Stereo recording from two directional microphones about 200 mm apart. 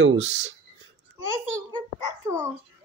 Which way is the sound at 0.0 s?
70° right (ahead or behind).